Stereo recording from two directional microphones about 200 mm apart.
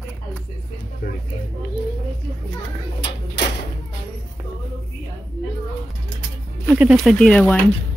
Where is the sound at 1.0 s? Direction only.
45° left (ahead or behind).